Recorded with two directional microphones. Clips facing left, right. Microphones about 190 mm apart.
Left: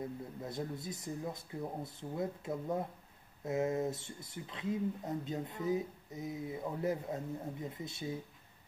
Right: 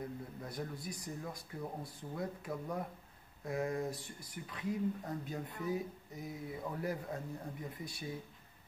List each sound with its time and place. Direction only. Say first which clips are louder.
0.0 s speech: left 2 dB; 25° left (ahead or behind)